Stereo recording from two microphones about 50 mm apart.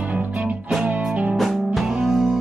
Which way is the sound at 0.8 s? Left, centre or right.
Right.